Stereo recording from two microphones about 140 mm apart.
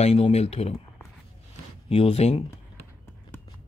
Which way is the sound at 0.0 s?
50° left (ahead or behind).